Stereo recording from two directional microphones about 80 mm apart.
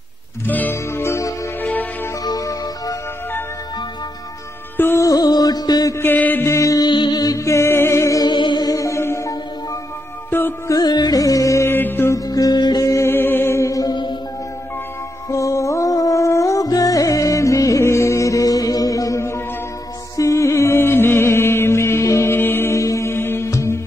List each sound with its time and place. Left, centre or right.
0.5 s music: left
2.2 s music: left
4.9 s music: left
5.9 s mantra: left
6.4 s music: left
6.8 s music: left
8.2 s music: left
8.6 s music: left
10.8 s music: left
11.6 s music: left
12.3 s music: left
12.8 s music: left
13.1 s music: left
15.2 s music: left